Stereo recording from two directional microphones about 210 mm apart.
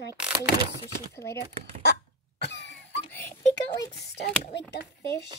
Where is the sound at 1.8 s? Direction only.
55° left (ahead or behind).